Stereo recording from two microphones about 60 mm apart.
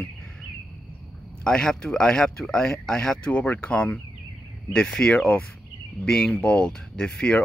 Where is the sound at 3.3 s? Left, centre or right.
Left.